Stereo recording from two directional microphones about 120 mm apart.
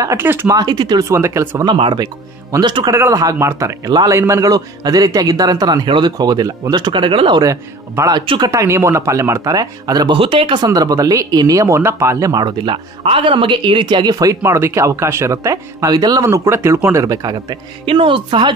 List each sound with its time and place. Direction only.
0.0 s speech: 25° right (ahead or behind)
0.6 s speech: 35° right (ahead or behind); by 1.6 s 20° right (ahead or behind)
1.8 s a man's voice: 40° right (ahead or behind)
2.9 s a man's voice: 25° right (ahead or behind); by 7.4 s 45° right (ahead or behind)
7.4 s speech: 30° right (ahead or behind)
10.1 s speech: 45° right (ahead or behind); by 17.6 s 30° right (ahead or behind)
17.8 s a woman's voice: 45° right (ahead or behind)